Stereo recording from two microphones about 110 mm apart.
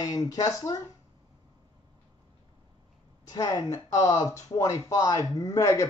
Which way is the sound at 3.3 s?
30° left (ahead or behind).